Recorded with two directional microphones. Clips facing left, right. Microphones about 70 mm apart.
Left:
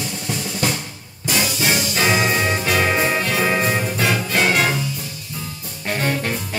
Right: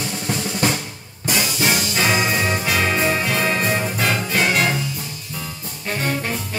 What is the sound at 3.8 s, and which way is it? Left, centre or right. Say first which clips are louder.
Music: left 1 dB; centre.